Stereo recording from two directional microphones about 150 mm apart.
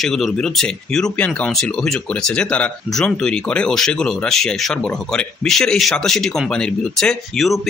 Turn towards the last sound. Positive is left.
turn(degrees=0)  # may be behind; listen again after turning